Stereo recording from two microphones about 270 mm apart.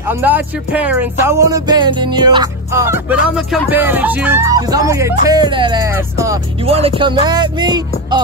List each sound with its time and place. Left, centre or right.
0.0 s music: centre